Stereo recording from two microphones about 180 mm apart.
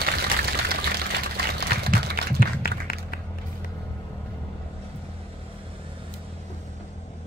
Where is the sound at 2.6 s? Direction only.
55° left (ahead or behind).